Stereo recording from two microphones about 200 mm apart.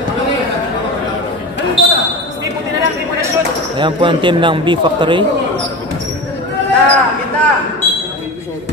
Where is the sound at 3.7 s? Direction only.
25° right (ahead or behind).